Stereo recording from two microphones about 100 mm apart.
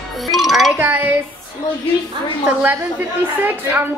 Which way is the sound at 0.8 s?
15° right (ahead or behind).